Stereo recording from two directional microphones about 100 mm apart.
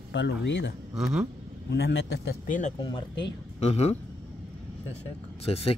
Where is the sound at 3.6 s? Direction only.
90° left.